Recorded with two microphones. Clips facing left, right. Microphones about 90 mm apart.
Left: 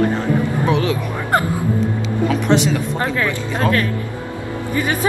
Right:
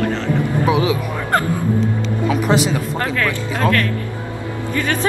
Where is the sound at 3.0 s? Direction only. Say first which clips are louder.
Even; 20° left (ahead or behind).